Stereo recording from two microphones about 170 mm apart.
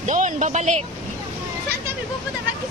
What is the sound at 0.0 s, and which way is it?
Speech, 45° right (ahead or behind).